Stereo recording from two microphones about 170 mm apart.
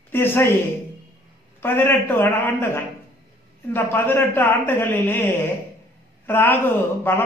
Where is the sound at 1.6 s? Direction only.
15° left (ahead or behind).